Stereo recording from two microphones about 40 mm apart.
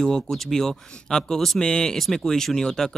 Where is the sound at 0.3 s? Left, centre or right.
Centre.